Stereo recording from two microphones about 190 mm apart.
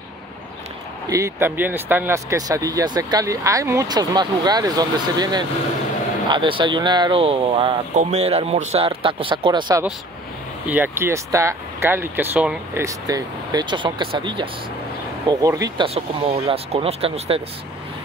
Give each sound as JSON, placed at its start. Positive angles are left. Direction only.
{"t": 1.0, "sound": "speech", "side_deg": -15}
{"t": 10.7, "sound": "speech", "side_deg": -10}
{"t": 15.9, "sound": "speech", "side_deg": -30}